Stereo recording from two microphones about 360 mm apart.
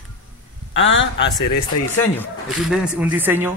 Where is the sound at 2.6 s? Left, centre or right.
Centre.